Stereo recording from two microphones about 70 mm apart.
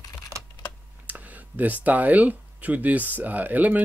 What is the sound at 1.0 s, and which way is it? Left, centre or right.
Speech, right.